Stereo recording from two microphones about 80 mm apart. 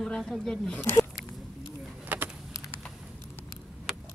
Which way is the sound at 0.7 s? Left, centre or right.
Left.